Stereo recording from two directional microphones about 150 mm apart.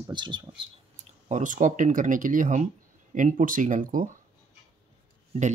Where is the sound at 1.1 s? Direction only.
50° right (ahead or behind).